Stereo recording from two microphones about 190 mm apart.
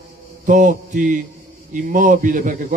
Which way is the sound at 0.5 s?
40° right (ahead or behind).